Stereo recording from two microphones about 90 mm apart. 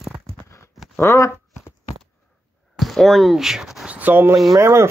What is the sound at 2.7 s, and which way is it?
Speech, centre (ahead or behind).